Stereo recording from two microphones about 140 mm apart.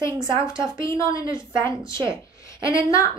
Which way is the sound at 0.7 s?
25° left (ahead or behind).